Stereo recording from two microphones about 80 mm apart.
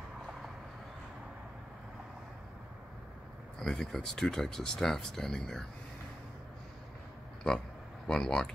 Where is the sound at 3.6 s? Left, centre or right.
Centre.